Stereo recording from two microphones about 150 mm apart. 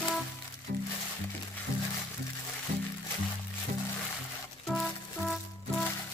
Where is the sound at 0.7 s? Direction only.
90° right.